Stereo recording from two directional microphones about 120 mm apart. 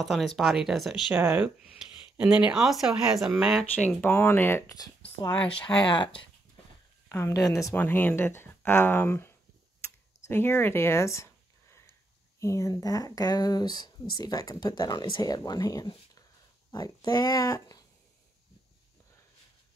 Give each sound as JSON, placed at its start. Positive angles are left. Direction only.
{"t": 0.0, "sound": "speech", "side_deg": 0}
{"t": 1.1, "sound": "speech", "side_deg": -15}
{"t": 3.7, "sound": "speech", "side_deg": 15}
{"t": 5.9, "sound": "speech", "side_deg": 40}
{"t": 7.1, "sound": "speech", "side_deg": 25}
{"t": 7.7, "sound": "speech", "side_deg": 15}
{"t": 10.2, "sound": "a sound", "side_deg": 20}
{"t": 12.4, "sound": "speech", "side_deg": 25}